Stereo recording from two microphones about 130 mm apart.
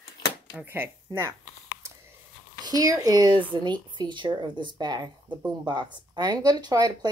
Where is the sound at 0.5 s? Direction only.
15° right (ahead or behind).